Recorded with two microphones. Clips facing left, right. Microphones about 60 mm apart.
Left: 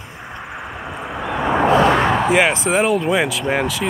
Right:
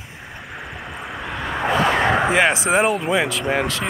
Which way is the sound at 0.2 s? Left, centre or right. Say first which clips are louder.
Left 4 dB; centre.